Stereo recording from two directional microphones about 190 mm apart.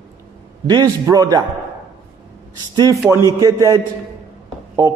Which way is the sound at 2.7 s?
20° right (ahead or behind).